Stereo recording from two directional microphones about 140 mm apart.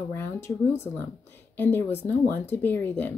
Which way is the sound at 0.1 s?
15° left (ahead or behind).